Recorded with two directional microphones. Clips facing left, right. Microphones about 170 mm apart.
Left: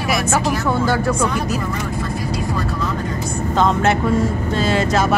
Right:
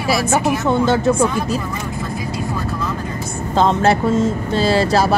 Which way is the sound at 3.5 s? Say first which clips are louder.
Right 2 dB; 30° right (ahead or behind).